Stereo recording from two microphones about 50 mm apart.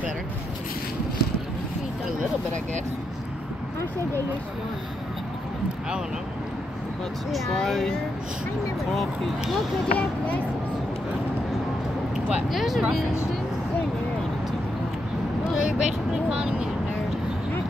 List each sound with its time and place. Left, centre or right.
7.3 s speech: centre
8.9 s speech: centre
9.9 s speech: left
12.4 s speech: centre
15.5 s vehicle: centre